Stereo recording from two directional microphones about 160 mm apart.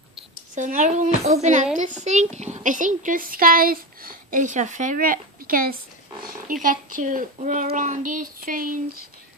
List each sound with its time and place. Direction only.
0.6 s speech: 50° right (ahead or behind)